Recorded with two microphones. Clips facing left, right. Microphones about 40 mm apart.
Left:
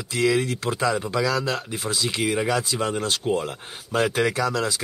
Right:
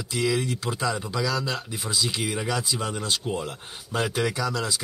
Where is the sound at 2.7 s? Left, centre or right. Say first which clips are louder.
Left 4 dB; centre.